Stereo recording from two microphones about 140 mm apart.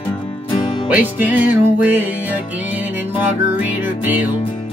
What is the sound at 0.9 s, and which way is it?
Music, 10° right (ahead or behind).